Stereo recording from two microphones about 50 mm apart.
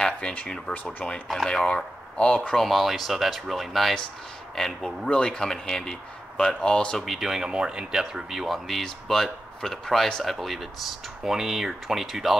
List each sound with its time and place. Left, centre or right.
0.5 s speech: centre
2.5 s speech: centre
4.6 s speech: centre
7.0 s speech: centre